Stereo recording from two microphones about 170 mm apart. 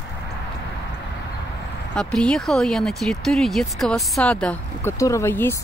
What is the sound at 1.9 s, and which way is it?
Speech, 5° left (ahead or behind).